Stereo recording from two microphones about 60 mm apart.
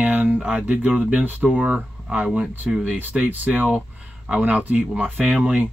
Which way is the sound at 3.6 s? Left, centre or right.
Centre.